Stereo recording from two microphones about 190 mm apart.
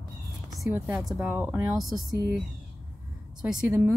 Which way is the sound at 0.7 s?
10° right (ahead or behind).